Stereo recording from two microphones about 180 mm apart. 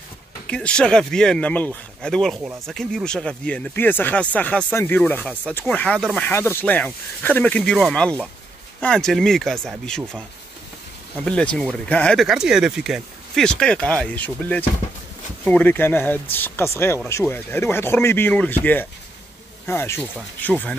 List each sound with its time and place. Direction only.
0.5 s speech: 5° left (ahead or behind)
11.2 s speech: 5° left (ahead or behind)